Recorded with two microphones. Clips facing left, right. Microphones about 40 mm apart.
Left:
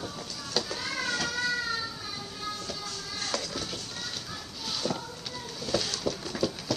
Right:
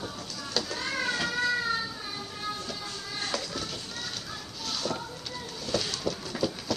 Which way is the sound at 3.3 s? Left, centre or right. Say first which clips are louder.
Even; centre.